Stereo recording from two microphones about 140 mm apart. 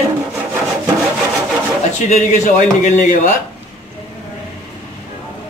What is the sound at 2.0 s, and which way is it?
A man's voice, 55° left (ahead or behind).